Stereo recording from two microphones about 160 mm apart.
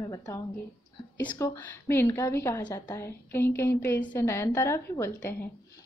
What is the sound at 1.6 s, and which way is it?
A woman's voice, 15° left (ahead or behind).